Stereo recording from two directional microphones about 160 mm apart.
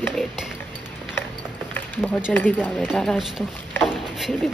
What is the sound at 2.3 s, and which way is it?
Speech, 10° left (ahead or behind).